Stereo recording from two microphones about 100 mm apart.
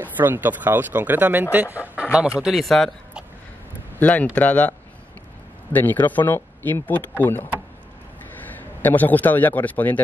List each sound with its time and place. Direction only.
0.0 s speech: 20° right (ahead or behind); by 2.9 s centre (ahead or behind)
4.0 s speech: 15° left (ahead or behind)
8.5 s a man's voice: 20° left (ahead or behind)